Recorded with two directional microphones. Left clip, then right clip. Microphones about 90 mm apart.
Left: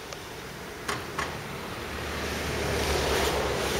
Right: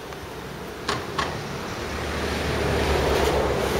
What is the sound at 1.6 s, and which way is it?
Waves, 5° right (ahead or behind).